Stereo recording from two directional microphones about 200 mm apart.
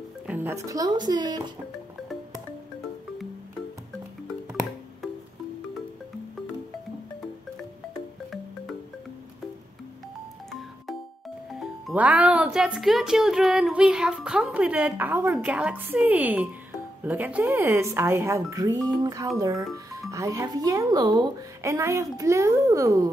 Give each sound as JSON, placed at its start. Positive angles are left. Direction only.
{"t": 0.3, "sound": "speech", "side_deg": -10}
{"t": 10.5, "sound": "music", "side_deg": 0}
{"t": 11.8, "sound": "speech", "side_deg": -5}